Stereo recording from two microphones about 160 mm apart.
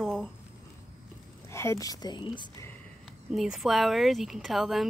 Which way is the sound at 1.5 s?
15° left (ahead or behind).